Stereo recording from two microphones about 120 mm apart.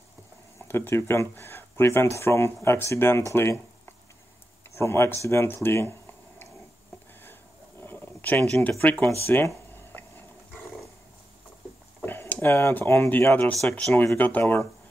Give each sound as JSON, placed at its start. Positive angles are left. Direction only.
{"t": 0.7, "sound": "speech", "side_deg": 20}
{"t": 4.7, "sound": "speech", "side_deg": 20}
{"t": 5.2, "sound": "a sound", "side_deg": 20}
{"t": 7.8, "sound": "a sound", "side_deg": 15}
{"t": 9.2, "sound": "speech", "side_deg": 20}
{"t": 12.0, "sound": "speech", "side_deg": 15}
{"t": 13.5, "sound": "speech", "side_deg": 5}